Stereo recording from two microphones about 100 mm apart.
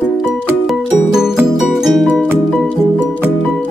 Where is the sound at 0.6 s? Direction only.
5° right (ahead or behind).